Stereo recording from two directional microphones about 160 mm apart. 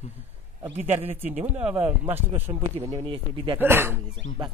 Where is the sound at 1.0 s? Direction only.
10° right (ahead or behind).